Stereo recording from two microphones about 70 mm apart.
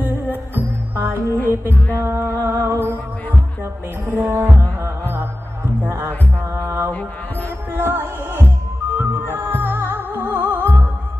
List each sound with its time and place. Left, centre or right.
0.9 s music: right
1.5 s mantra: right
2.0 s music: right
4.1 s music: right